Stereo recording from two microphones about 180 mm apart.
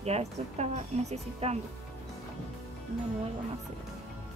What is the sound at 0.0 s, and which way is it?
Speech, 35° right (ahead or behind).